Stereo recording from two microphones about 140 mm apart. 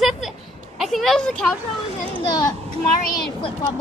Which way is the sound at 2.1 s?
30° left (ahead or behind).